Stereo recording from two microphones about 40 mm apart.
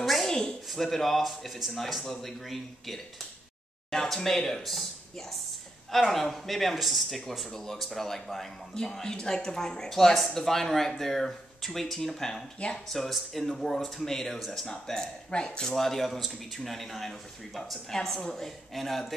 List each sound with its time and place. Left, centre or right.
0.0 s a sound: centre
0.3 s a sound: centre
0.7 s speech: centre
5.9 s speech: centre
15.3 s speech: left
15.7 s speech: centre